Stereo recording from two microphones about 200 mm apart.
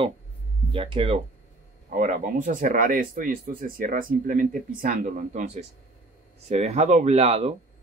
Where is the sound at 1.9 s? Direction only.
40° right (ahead or behind).